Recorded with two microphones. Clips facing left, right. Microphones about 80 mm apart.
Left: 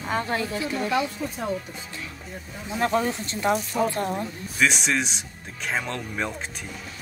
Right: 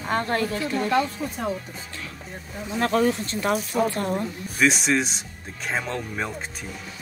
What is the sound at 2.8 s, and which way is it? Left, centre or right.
Speech, centre.